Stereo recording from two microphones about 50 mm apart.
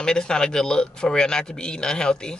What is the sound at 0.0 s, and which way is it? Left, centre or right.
Speech, centre.